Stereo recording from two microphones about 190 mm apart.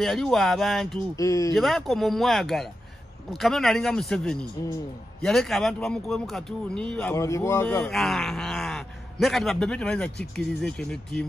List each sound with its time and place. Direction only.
0.0 s speech: centre (ahead or behind)
1.1 s speech: 15° left (ahead or behind)
1.5 s speech: centre (ahead or behind)
7.2 s speech: 15° left (ahead or behind)